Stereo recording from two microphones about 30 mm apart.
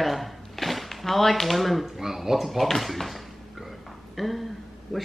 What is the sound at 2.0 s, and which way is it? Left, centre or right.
Speech, centre.